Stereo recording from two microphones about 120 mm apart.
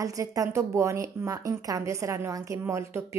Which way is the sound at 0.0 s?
30° right (ahead or behind).